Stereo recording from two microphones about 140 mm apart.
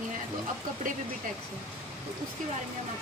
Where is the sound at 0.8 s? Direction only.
75° right (ahead or behind).